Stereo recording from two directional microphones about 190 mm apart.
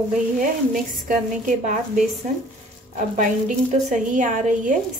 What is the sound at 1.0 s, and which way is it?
A woman's voice, 45° right (ahead or behind).